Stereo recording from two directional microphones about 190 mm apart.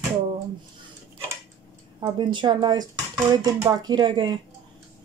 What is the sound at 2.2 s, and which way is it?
Speech, 25° right (ahead or behind).